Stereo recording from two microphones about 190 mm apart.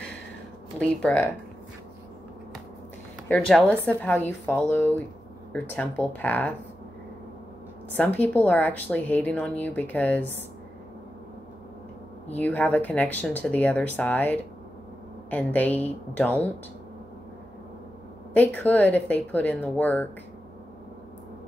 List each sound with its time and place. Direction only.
0.7 s a woman's voice: 5° left (ahead or behind)
3.3 s a woman's voice: 5° left (ahead or behind)
7.9 s a woman's voice: 10° left (ahead or behind)
12.3 s a woman's voice: 10° left (ahead or behind)
18.3 s a woman's voice: 10° left (ahead or behind)